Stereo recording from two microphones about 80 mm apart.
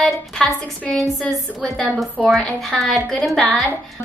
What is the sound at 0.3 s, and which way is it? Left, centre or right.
A woman's voice, centre.